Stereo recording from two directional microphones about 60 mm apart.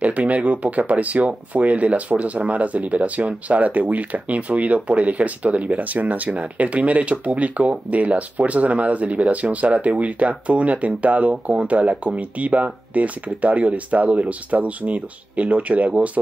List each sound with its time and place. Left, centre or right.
0.0 s speech: right